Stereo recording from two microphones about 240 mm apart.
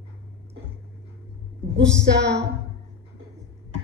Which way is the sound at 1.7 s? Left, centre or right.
Right.